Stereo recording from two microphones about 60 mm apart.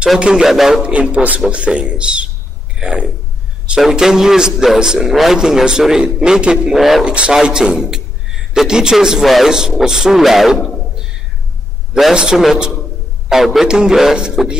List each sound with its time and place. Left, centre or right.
0.2 s a man's voice: centre
0.8 s a man's voice: right; by 7.1 s centre
7.1 s a man's voice: centre
9.5 s a man's voice: centre